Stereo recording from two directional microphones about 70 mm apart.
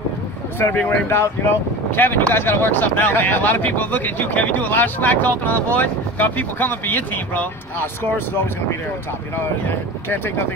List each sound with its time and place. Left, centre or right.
0.6 s speech: left
10.0 s speech: left